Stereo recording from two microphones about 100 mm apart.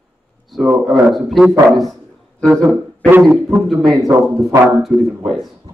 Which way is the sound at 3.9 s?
35° right (ahead or behind).